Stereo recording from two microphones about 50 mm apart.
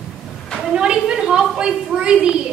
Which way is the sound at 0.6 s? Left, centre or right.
Centre.